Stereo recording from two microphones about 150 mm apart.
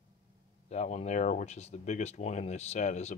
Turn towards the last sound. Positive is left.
turn(degrees=50)  # may be behind; listen again after turning